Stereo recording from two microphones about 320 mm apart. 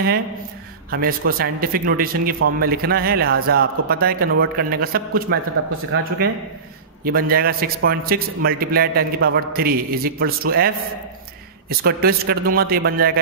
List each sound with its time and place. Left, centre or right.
0.8 s a man's voice: right
11.7 s a man's voice: right